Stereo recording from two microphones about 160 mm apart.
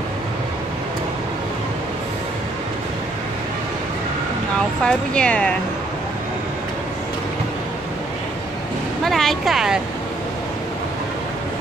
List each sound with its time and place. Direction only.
4.8 s speech: 5° left (ahead or behind)
9.0 s speech: centre (ahead or behind)